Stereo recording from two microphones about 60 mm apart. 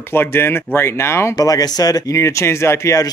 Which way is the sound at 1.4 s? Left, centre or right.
Left.